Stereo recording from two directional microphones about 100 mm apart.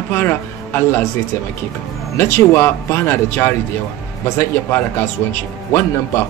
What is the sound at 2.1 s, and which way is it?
Speech, 25° left (ahead or behind).